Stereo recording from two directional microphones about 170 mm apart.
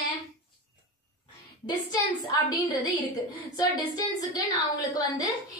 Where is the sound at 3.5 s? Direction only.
20° left (ahead or behind).